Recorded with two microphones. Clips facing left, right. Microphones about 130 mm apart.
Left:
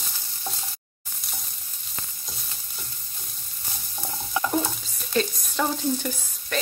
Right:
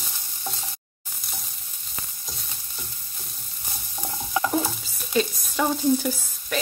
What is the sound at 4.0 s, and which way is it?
Stir, centre (ahead or behind).